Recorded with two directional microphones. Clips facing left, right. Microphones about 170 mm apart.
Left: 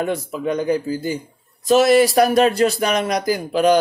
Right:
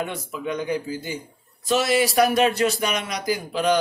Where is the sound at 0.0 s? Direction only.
40° left (ahead or behind).